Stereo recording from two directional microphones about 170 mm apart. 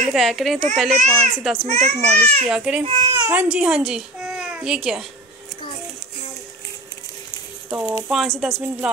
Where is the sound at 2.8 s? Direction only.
30° right (ahead or behind).